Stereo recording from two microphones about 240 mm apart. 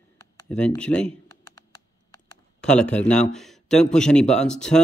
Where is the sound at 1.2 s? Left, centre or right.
Centre.